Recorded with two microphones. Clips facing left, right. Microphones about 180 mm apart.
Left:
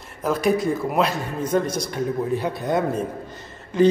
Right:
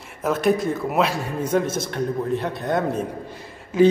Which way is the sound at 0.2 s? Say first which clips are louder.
Even; centre (ahead or behind).